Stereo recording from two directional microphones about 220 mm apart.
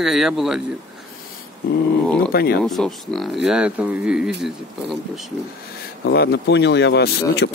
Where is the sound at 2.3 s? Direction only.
45° left (ahead or behind).